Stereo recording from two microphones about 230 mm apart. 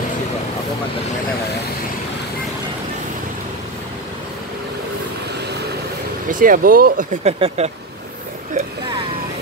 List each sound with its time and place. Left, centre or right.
6.2 s speech: right